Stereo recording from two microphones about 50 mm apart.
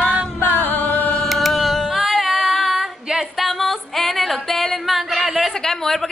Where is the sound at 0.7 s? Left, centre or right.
Left.